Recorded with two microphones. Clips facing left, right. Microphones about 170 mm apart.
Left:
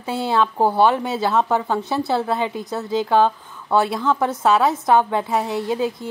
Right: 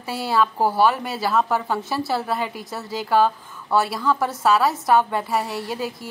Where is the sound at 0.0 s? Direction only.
20° left (ahead or behind).